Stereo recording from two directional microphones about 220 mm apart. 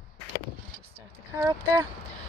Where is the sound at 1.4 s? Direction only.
15° right (ahead or behind).